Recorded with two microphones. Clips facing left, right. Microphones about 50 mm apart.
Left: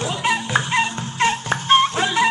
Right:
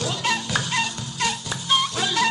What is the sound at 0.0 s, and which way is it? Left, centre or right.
Music, left.